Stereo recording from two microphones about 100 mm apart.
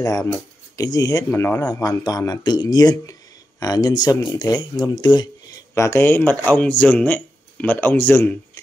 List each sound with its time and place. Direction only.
0.0 s speech: 35° left (ahead or behind)
1.3 s speech: 25° left (ahead or behind)
1.6 s speech: 40° left (ahead or behind)
5.8 s speech: 25° left (ahead or behind)